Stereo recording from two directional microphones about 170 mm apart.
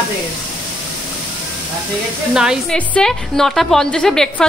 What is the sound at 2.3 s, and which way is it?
A woman's voice, 5° right (ahead or behind).